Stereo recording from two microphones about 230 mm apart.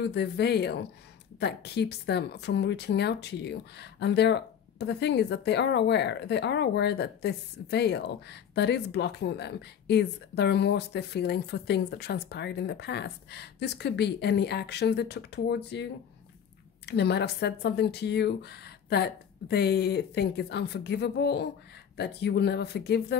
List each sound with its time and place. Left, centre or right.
0.0 s speech: left